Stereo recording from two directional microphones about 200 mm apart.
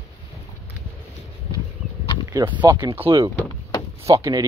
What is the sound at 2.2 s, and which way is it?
Speech, 20° right (ahead or behind).